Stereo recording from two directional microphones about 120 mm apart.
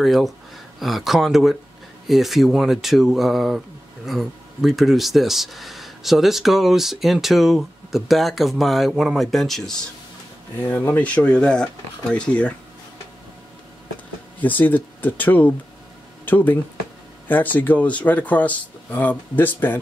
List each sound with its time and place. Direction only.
0.0 s speech: centre (ahead or behind)
10.5 s speech: 20° left (ahead or behind)
14.4 s speech: 15° left (ahead or behind)